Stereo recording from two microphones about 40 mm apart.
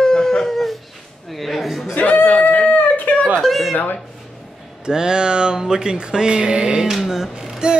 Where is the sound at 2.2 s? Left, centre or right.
Left.